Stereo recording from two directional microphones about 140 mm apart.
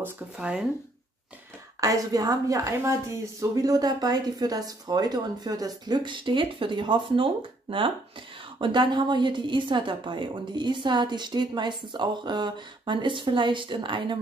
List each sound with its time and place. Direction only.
0.0 s speech: 5° right (ahead or behind)
1.8 s a woman's voice: 25° right (ahead or behind)
8.5 s a woman's voice: 35° right (ahead or behind)